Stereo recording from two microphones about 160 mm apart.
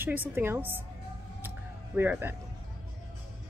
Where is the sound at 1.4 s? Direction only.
10° right (ahead or behind).